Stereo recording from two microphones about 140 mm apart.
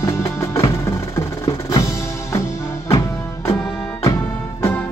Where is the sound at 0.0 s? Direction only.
20° left (ahead or behind).